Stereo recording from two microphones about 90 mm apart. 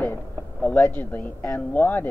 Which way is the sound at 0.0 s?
20° left (ahead or behind).